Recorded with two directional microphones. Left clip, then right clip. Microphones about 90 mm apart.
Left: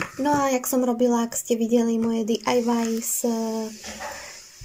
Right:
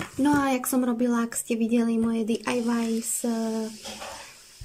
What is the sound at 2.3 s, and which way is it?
Speech, 20° left (ahead or behind).